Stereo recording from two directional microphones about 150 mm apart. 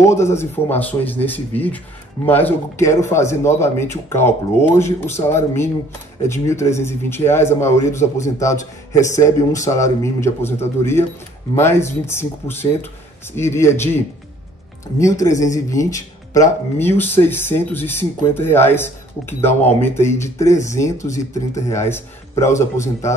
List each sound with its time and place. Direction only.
0.0 s speech: 20° left (ahead or behind)
15.5 s speech: 20° left (ahead or behind)